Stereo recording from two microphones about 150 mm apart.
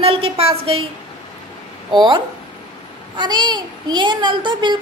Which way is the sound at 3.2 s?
30° right (ahead or behind).